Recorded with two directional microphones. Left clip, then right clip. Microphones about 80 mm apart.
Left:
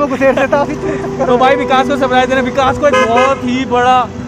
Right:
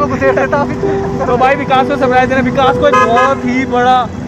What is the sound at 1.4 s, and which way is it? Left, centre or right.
Speech, left.